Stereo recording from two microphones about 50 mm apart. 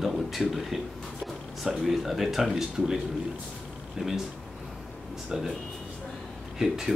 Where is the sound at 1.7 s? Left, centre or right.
Centre.